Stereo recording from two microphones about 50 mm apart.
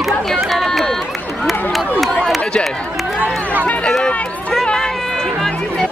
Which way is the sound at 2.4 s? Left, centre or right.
Left.